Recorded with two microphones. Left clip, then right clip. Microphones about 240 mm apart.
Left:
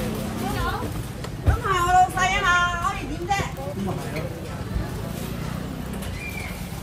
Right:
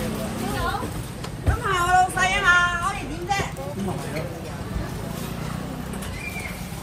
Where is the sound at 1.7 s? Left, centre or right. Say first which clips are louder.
Left 1 dB; left.